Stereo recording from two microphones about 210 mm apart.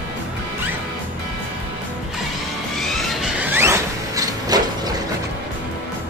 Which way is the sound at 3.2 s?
10° right (ahead or behind).